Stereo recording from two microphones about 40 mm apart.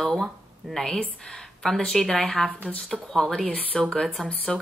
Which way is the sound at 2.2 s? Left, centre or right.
Left.